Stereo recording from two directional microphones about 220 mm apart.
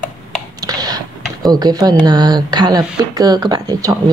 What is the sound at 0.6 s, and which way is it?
Computer keyboard, 15° right (ahead or behind).